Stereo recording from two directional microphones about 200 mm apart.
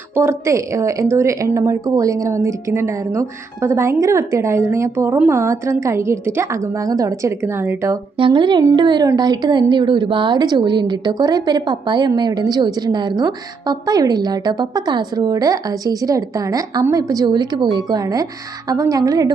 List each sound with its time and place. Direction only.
0.1 s speech: 10° right (ahead or behind)
8.2 s a woman's voice: 25° right (ahead or behind)